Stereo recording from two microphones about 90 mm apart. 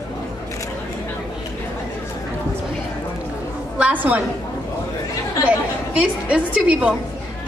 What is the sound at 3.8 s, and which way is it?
Speech, 15° right (ahead or behind).